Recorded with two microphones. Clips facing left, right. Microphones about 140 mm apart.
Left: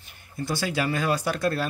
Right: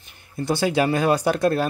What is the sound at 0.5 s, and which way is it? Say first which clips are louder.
Speech: right 6 dB; 25° right (ahead or behind).